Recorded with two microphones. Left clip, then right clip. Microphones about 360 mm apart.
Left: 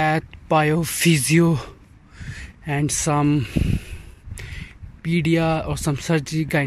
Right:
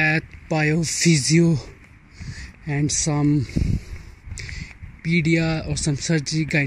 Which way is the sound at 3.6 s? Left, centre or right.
Left.